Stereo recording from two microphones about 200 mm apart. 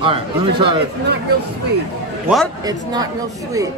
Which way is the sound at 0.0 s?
25° right (ahead or behind).